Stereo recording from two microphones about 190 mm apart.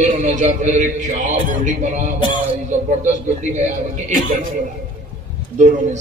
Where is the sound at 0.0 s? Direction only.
40° right (ahead or behind).